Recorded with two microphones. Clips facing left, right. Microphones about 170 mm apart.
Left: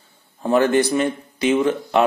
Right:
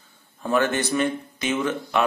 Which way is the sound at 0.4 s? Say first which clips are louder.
Left 6 dB; 30° left (ahead or behind).